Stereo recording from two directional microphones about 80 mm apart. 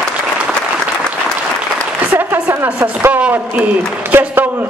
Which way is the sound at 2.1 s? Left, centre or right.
Right.